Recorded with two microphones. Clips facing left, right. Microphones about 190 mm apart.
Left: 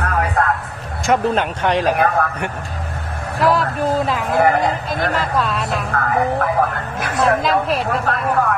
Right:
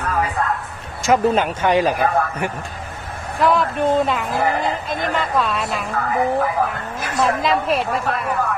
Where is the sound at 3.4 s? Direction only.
Centre (ahead or behind).